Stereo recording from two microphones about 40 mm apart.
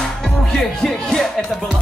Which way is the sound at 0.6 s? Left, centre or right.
Centre.